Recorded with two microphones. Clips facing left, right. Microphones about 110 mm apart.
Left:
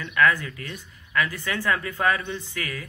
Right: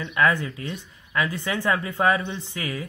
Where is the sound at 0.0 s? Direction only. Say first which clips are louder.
Even; 25° right (ahead or behind).